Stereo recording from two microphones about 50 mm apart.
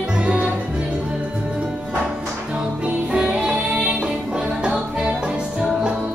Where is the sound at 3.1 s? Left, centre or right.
Centre.